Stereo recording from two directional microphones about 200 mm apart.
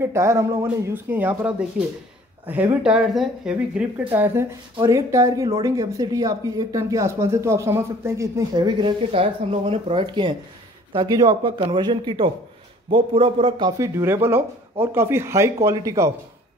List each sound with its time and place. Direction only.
0.0 s speech: 15° right (ahead or behind)